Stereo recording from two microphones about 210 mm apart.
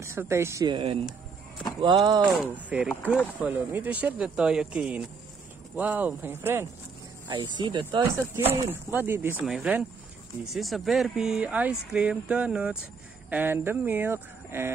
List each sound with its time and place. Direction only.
0.0 s speech: 10° right (ahead or behind)
2.4 s speech: 5° right (ahead or behind)
7.2 s speech: 20° right (ahead or behind)